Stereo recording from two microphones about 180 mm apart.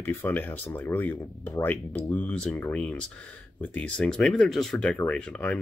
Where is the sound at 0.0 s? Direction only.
10° left (ahead or behind).